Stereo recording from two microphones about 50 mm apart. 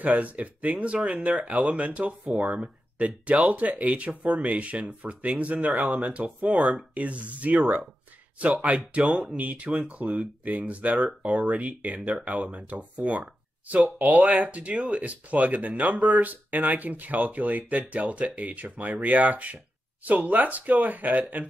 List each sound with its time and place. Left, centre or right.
0.0 s speech: right